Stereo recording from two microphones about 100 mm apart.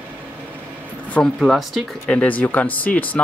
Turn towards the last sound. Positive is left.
turn(degrees=15)  # may be behind; listen again after turning